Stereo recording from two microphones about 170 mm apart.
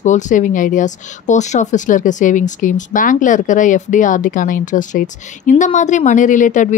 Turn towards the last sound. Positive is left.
turn(degrees=45)  # may be behind; listen again after turning